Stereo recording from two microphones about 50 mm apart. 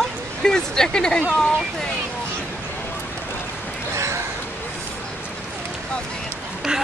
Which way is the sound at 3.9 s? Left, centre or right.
Right.